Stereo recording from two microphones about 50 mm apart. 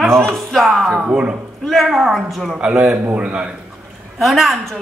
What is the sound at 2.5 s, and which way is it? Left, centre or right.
Speech, centre.